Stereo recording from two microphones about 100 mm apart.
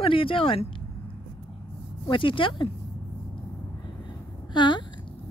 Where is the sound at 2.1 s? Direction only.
55° left (ahead or behind).